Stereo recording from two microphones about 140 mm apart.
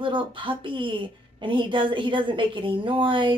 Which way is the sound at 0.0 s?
35° right (ahead or behind).